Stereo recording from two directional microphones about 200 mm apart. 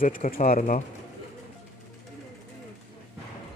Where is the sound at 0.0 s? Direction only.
45° left (ahead or behind).